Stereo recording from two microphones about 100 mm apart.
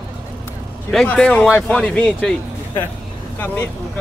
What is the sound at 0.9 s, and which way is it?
Speech, 5° left (ahead or behind).